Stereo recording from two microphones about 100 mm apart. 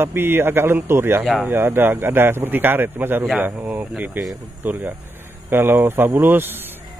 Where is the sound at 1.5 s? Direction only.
20° right (ahead or behind).